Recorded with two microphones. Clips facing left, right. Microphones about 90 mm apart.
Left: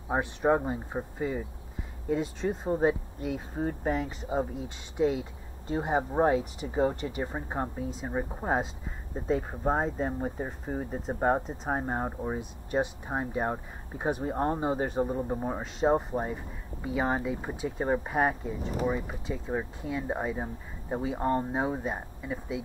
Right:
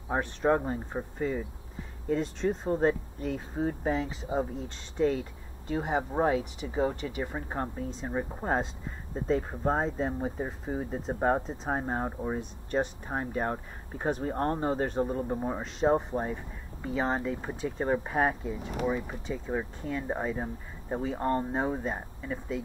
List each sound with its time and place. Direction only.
0.1 s speech: 15° left (ahead or behind)
6.2 s speech: 35° left (ahead or behind)
7.2 s speech: 15° left (ahead or behind)